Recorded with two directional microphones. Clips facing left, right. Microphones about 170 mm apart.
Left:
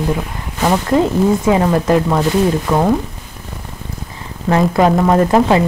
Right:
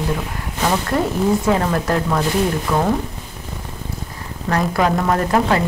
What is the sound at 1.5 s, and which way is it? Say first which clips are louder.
Speech: left 5 dB; 15° left (ahead or behind).